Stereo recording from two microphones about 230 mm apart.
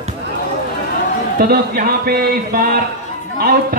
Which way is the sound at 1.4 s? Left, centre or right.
Right.